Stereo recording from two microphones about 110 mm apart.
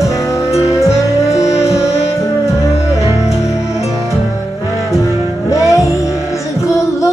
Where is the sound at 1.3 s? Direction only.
75° left (ahead or behind).